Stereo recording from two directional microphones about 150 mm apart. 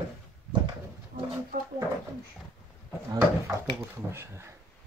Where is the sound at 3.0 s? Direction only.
20° right (ahead or behind).